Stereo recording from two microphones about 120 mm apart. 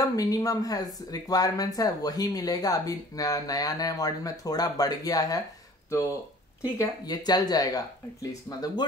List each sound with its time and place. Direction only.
0.0 s speech: 30° left (ahead or behind)
6.8 s speech: 35° left (ahead or behind)